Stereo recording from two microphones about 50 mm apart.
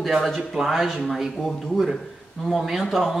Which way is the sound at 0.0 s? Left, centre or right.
Centre.